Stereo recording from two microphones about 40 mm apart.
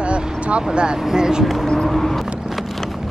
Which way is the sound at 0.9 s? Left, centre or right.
Centre.